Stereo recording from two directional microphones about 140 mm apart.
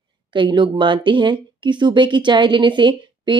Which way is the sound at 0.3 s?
35° right (ahead or behind).